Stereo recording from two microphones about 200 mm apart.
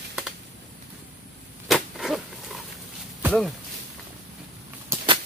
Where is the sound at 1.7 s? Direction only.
Centre (ahead or behind).